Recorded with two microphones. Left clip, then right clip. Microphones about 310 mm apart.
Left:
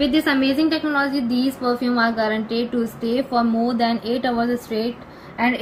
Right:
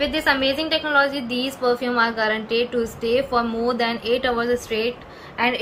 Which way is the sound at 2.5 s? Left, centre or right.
Centre.